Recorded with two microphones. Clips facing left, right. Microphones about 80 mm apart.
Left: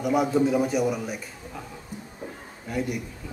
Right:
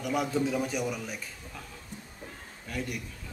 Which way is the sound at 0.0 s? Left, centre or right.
Centre.